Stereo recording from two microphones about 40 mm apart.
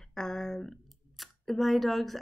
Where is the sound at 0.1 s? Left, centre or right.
Centre.